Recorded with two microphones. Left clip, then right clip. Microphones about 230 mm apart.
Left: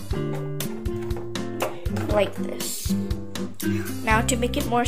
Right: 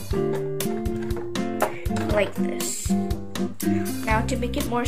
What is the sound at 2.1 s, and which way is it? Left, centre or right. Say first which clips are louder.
Speech: left 1 dB; centre.